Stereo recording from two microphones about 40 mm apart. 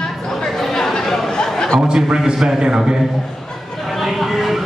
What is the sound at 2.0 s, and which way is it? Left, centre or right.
Speech, right.